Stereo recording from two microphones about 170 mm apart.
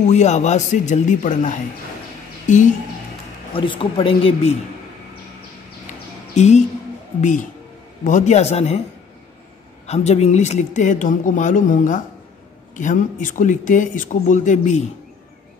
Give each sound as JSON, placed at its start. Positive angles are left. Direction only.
{"t": 0.0, "sound": "speech", "side_deg": 40}
{"t": 3.5, "sound": "speech", "side_deg": 30}
{"t": 6.3, "sound": "speech", "side_deg": 40}
{"t": 9.8, "sound": "speech", "side_deg": 40}